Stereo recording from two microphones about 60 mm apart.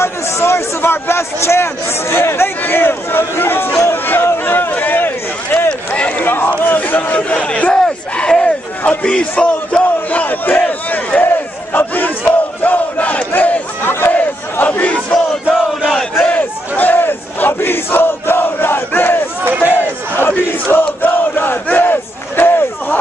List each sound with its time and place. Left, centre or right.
0.0 s a man's voice: left
3.9 s a sound: left
5.9 s run: left
6.6 s speech: left
7.8 s a sound: centre
8.8 s speech: left
10.2 s battle cry: left
14.1 s battle cry: left
16.2 s battle cry: left